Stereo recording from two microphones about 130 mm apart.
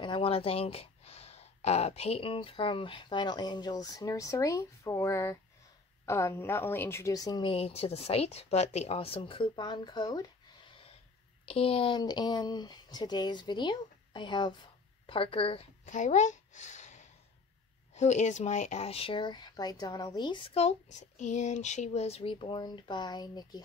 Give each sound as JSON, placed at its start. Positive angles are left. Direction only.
{"t": 0.0, "sound": "a woman's voice", "side_deg": 40}
{"t": 7.4, "sound": "speech", "side_deg": 50}
{"t": 11.4, "sound": "speech", "side_deg": 45}
{"t": 15.8, "sound": "a sound", "side_deg": 70}
{"t": 17.9, "sound": "speech", "side_deg": 60}
{"t": 21.2, "sound": "speech", "side_deg": 65}